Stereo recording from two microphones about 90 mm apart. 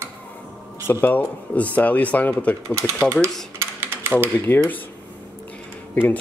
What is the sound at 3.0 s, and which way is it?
Speech, 25° right (ahead or behind).